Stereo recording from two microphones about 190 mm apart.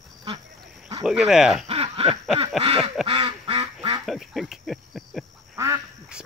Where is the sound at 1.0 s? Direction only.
5° right (ahead or behind).